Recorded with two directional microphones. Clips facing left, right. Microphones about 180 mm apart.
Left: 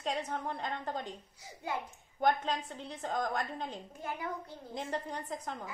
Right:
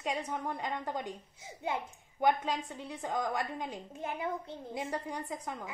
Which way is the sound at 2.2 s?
10° right (ahead or behind).